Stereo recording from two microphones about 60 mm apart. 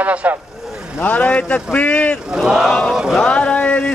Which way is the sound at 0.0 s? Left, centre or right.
Right.